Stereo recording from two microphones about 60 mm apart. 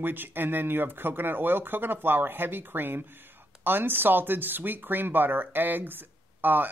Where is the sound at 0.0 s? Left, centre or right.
Right.